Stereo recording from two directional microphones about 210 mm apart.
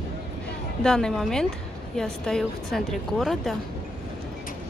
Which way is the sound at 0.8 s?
5° left (ahead or behind).